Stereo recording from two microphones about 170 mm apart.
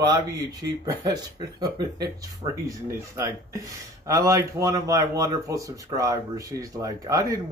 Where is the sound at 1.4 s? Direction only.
20° right (ahead or behind).